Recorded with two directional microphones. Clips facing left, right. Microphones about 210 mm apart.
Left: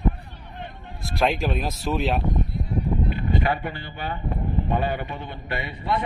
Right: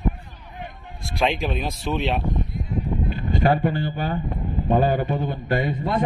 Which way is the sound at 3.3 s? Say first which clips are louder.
Right 8 dB; 40° right (ahead or behind).